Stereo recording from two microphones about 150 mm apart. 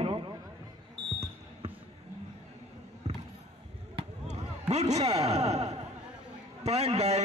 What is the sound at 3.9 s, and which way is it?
Basketball bounce, 45° right (ahead or behind).